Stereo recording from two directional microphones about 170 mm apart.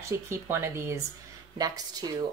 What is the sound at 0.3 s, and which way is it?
Speech, 15° right (ahead or behind).